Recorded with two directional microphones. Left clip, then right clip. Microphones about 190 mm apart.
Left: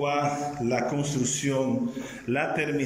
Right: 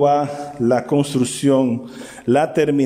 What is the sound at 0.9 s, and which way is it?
A man's voice, 50° right (ahead or behind).